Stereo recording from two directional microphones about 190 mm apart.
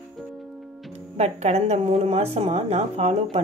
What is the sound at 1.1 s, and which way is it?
Speech, 35° right (ahead or behind).